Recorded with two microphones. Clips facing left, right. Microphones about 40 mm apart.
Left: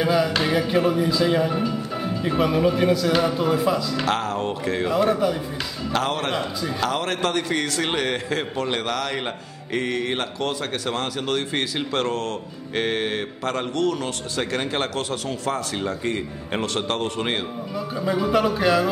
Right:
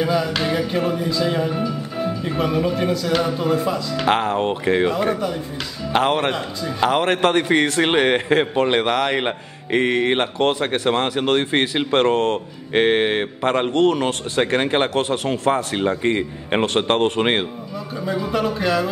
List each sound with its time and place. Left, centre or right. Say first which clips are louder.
0.0 s speech: even; centre
4.0 s speech: right 5 dB; right
5.9 s a man's voice: right 5 dB; right
18.0 s speech: left 1 dB; centre